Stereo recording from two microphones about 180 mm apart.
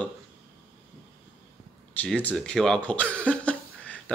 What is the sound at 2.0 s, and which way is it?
Speech, 10° left (ahead or behind).